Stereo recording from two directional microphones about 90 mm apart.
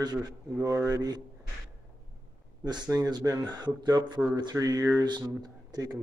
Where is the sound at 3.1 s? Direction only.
55° right (ahead or behind).